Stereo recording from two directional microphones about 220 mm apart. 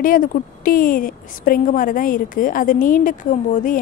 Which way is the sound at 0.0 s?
40° left (ahead or behind).